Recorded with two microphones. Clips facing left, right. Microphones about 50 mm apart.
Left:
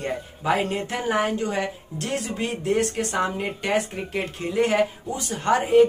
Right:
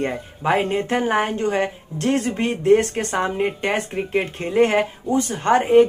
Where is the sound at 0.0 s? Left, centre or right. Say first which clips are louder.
Right 4 dB; right.